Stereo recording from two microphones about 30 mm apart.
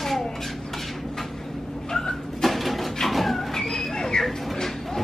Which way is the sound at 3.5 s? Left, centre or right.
Centre.